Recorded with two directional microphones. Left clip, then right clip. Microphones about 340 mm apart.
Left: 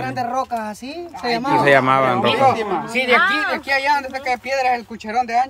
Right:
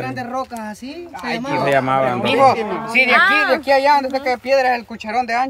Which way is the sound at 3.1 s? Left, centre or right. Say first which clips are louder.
Right 2 dB; right.